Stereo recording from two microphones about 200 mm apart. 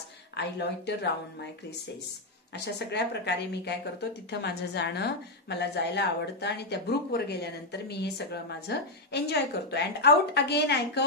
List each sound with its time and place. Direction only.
0.4 s a woman's voice: 55° left (ahead or behind)
2.5 s a woman's voice: 55° left (ahead or behind)